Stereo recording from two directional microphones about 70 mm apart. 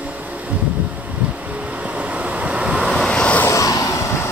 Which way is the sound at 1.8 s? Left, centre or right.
Centre.